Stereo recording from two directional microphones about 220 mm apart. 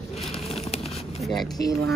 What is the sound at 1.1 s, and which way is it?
Speech, centre (ahead or behind).